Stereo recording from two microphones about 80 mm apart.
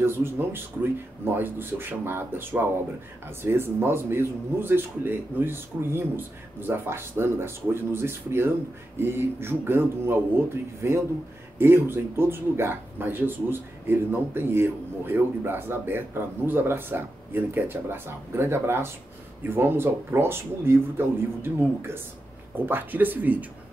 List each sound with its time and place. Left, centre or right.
0.0 s speech: right